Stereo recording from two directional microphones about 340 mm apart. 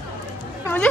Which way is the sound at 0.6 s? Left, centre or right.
Centre.